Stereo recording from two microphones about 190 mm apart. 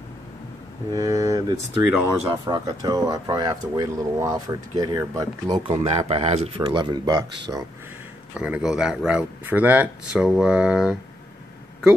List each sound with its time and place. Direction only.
0.9 s speech: 15° right (ahead or behind)
5.7 s speech: 35° right (ahead or behind)
8.4 s speech: 5° right (ahead or behind)